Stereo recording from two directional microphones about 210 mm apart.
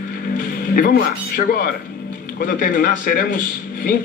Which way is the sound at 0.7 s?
40° left (ahead or behind).